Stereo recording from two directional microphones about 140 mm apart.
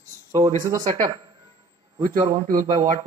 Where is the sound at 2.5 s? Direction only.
65° right (ahead or behind).